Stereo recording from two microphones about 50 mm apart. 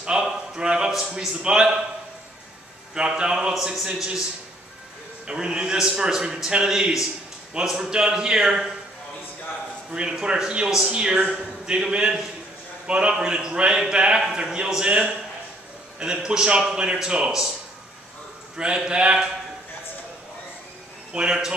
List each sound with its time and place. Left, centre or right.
0.0 s a sound: centre
1.4 s a man's voice: centre
2.9 s a man's voice: centre
3.5 s a man's voice: centre
5.2 s a man's voice: centre
9.8 s a man's voice: centre
18.9 s a man's voice: right
21.1 s a man's voice: centre